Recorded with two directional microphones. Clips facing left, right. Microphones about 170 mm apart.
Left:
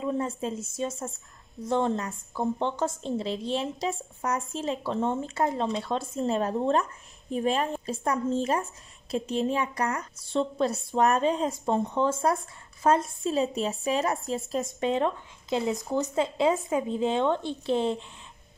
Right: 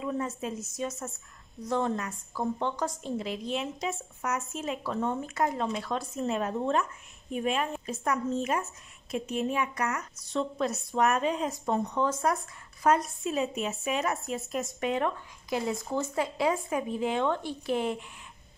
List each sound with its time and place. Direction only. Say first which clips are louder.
0.0 s a woman's voice: left 3 dB; 30° left (ahead or behind)